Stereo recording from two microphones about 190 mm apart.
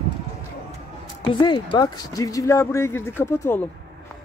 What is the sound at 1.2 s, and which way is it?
A woman's voice, 25° left (ahead or behind).